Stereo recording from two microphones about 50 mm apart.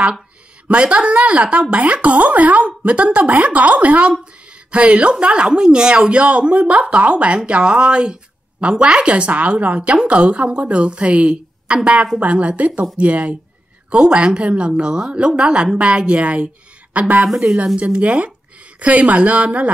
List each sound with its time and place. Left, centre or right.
0.7 s speech: right
4.2 s a sound: right
5.2 s speech: centre